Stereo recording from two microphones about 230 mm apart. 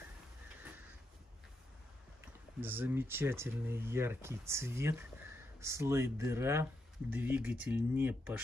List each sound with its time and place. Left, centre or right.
2.6 s speech: centre